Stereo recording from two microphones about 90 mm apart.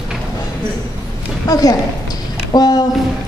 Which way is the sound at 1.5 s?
40° left (ahead or behind).